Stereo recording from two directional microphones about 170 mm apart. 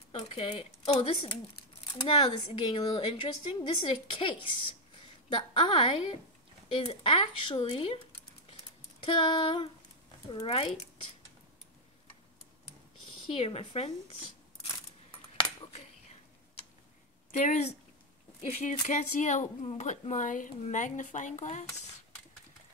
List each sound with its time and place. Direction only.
0.1 s a woman's voice: 35° left (ahead or behind)
9.0 s speech: 30° left (ahead or behind)
13.3 s speech: 35° left (ahead or behind)
14.7 s coin: 25° left (ahead or behind)
17.3 s speech: 45° left (ahead or behind)